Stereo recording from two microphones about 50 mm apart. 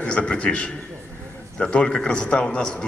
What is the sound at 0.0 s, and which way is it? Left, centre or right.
A man's voice, left.